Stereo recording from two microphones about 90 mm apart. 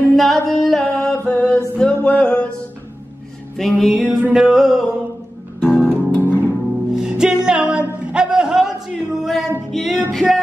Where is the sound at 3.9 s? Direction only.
15° right (ahead or behind).